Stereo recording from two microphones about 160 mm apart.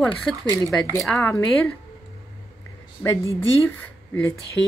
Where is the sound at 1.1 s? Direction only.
20° left (ahead or behind).